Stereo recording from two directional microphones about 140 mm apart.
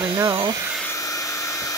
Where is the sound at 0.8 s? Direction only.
25° left (ahead or behind).